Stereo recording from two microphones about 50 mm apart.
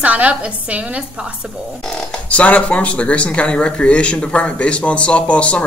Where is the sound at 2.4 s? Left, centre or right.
Left.